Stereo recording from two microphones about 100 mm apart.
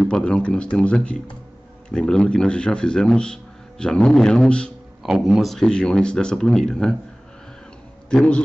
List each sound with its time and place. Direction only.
0.0 s a man's voice: 10° left (ahead or behind)
5.0 s speech: 5° right (ahead or behind)
8.1 s speech: 10° left (ahead or behind)